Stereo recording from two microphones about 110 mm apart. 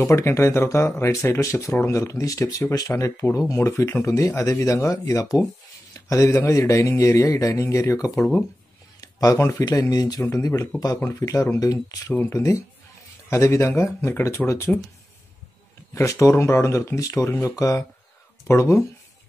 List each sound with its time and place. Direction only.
0.0 s speech: 25° left (ahead or behind)
5.9 s a sound: 30° left (ahead or behind)
6.3 s speech: 25° left (ahead or behind)
12.1 s speech: 20° left (ahead or behind)
15.9 s speech: 25° left (ahead or behind)